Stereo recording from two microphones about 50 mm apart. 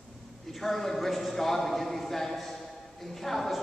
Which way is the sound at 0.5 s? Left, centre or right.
Centre.